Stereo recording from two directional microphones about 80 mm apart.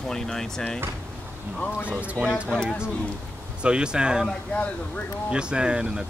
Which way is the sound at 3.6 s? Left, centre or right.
Centre.